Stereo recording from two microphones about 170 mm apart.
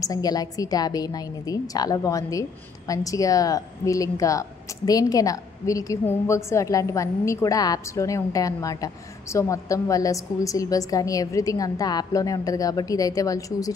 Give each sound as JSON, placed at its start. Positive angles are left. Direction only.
{"t": 0.0, "sound": "a woman's voice", "side_deg": 20}